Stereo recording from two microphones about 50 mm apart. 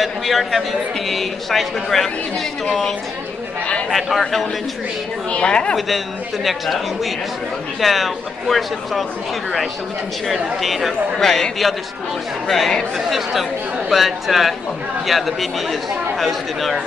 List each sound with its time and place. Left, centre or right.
0.0 s a man's voice: centre
3.9 s a man's voice: centre
5.3 s a woman's voice: left
6.4 s a man's voice: centre
7.8 s a man's voice: centre
10.6 s a man's voice: centre
12.4 s a man's voice: centre